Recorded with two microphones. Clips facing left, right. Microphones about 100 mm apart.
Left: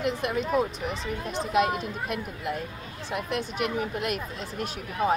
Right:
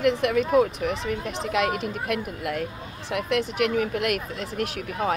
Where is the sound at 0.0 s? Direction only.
65° right (ahead or behind).